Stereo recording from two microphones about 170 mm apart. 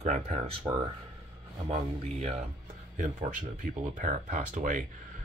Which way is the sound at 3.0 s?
50° right (ahead or behind).